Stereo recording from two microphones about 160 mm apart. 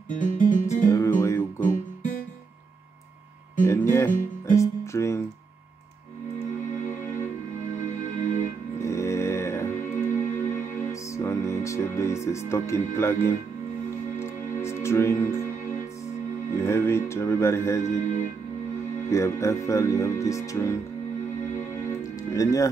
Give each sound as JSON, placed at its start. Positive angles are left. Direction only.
{"t": 0.1, "sound": "music", "side_deg": 55}
{"t": 0.8, "sound": "music", "side_deg": 20}
{"t": 3.6, "sound": "music", "side_deg": 15}
{"t": 8.2, "sound": "music", "side_deg": 50}
{"t": 8.8, "sound": "music", "side_deg": 20}
{"t": 9.9, "sound": "music", "side_deg": 55}
{"t": 10.9, "sound": "music", "side_deg": 20}
{"t": 16.5, "sound": "music", "side_deg": 15}
{"t": 17.8, "sound": "speech", "side_deg": 50}
{"t": 19.0, "sound": "speech", "side_deg": 20}
{"t": 22.3, "sound": "speech", "side_deg": 20}